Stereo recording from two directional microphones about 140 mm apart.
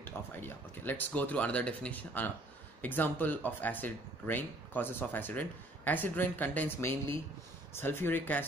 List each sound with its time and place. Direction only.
0.0 s speech: 15° left (ahead or behind)